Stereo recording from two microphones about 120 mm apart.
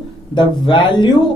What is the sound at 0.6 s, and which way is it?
Speech, 40° left (ahead or behind).